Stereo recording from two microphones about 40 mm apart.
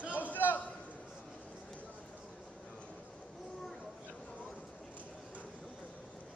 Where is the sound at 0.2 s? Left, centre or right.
Left.